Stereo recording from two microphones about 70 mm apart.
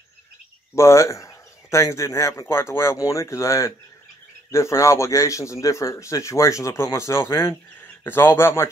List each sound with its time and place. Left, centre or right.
0.7 s a man's voice: left
7.8 s speech: left